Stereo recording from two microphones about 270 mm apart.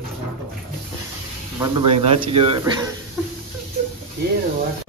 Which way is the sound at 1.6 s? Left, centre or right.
Centre.